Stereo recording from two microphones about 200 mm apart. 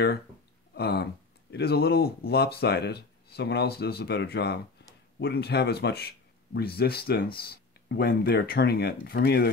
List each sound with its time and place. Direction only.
0.7 s speech: 50° left (ahead or behind)